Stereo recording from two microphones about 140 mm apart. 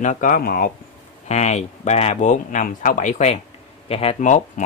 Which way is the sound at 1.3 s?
55° left (ahead or behind).